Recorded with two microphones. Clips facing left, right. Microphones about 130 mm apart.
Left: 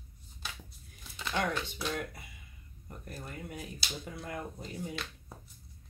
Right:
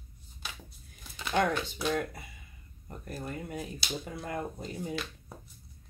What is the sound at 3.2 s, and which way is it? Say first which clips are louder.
Speech: right 5 dB; 35° right (ahead or behind).